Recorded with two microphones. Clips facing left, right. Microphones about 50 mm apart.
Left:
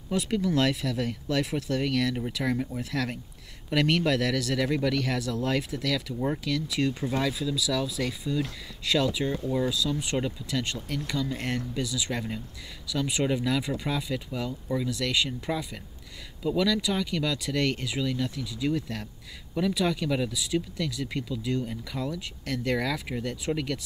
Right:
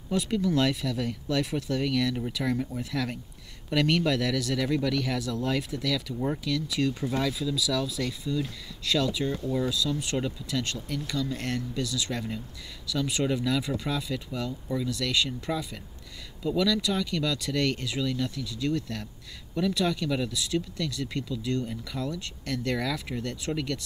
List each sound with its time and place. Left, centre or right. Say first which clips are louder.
0.1 s speech: even; centre